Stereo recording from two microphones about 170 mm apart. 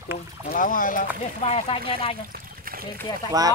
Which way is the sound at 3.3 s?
20° right (ahead or behind).